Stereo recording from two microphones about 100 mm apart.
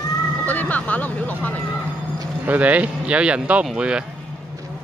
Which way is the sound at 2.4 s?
15° right (ahead or behind).